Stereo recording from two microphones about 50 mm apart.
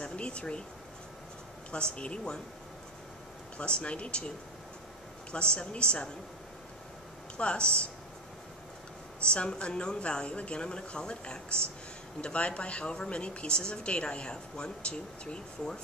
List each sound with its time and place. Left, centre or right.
0.0 s speech: left
1.7 s speech: left
3.5 s speech: left
5.3 s speech: left
7.3 s speech: left
9.2 s a woman's voice: left